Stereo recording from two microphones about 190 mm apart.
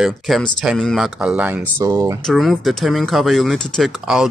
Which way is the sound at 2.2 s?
Centre (ahead or behind).